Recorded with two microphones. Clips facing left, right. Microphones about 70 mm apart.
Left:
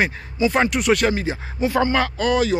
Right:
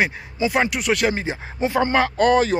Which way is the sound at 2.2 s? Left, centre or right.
Right.